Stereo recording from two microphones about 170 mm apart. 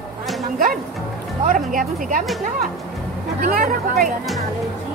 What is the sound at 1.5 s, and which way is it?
Speech, 50° right (ahead or behind).